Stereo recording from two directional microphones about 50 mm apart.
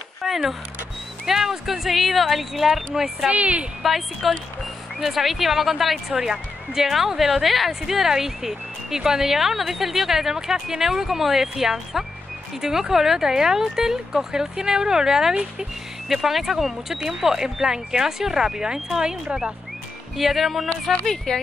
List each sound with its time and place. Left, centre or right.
0.2 s vehicle: centre
1.2 s a woman's voice: centre
3.3 s speech: right
3.8 s a woman's voice: centre
21.0 s speech: centre